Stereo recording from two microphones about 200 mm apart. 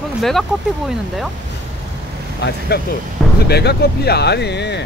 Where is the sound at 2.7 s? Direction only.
50° left (ahead or behind).